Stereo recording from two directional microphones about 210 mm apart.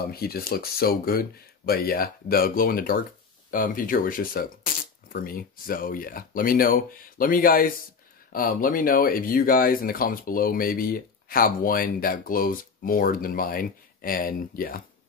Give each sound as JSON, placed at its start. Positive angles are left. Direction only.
{"t": 0.1, "sound": "speech", "side_deg": 45}